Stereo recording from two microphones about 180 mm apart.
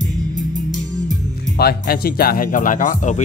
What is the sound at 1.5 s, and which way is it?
Speech, 60° left (ahead or behind).